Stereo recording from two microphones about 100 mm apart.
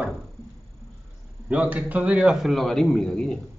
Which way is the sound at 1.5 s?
15° right (ahead or behind).